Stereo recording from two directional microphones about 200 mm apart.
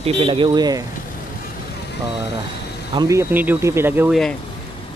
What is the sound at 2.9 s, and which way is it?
Speech, 15° right (ahead or behind).